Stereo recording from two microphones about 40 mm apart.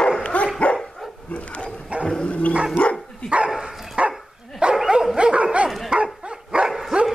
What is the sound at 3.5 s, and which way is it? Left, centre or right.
Dog, centre.